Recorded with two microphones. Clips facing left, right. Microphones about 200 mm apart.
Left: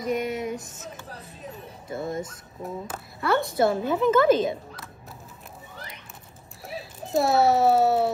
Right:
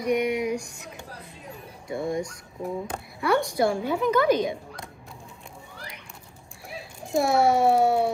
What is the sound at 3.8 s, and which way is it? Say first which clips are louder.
Speech: left 2 dB; 15° right (ahead or behind).